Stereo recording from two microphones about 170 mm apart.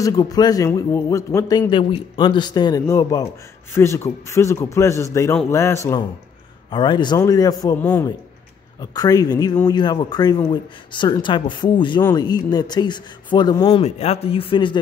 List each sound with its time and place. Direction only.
0.0 s a man's voice: 20° left (ahead or behind)
7.8 s a man's voice: 10° left (ahead or behind)
8.9 s speech: 20° left (ahead or behind)